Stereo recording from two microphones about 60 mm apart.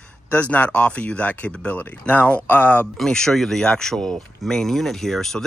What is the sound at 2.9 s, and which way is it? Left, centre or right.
Speech, centre.